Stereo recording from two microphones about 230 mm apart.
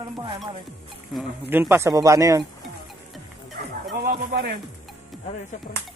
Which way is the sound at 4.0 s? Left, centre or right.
Right.